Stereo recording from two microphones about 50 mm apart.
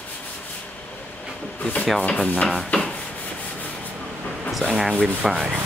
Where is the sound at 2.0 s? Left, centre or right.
Left.